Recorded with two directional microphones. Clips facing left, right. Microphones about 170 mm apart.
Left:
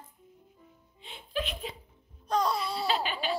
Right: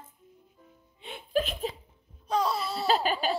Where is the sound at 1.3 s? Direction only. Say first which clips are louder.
Right 6 dB; 45° right (ahead or behind).